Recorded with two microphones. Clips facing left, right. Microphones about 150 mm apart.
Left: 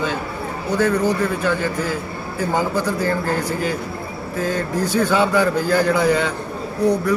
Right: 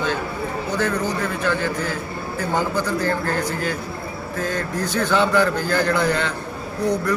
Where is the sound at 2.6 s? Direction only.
10° left (ahead or behind).